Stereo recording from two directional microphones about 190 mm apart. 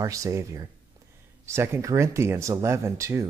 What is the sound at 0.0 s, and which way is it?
Speech, 15° right (ahead or behind).